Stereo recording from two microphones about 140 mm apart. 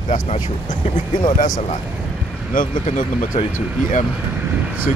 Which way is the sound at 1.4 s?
75° left (ahead or behind).